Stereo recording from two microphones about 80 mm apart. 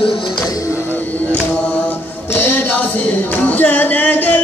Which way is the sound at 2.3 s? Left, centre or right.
Left.